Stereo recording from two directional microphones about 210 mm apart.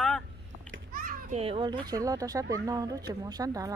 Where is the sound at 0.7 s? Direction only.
40° right (ahead or behind).